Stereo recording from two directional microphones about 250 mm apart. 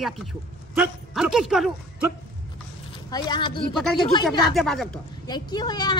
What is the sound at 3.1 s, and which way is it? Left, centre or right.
Speech, centre.